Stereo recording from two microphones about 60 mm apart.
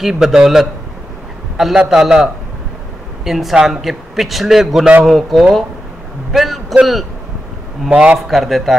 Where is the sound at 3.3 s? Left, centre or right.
Centre.